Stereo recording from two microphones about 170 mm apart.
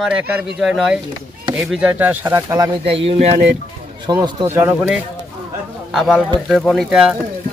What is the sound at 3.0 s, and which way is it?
Speech, 35° right (ahead or behind).